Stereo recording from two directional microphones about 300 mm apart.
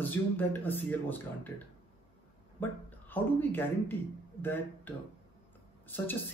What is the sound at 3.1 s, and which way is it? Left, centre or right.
A man's voice, centre.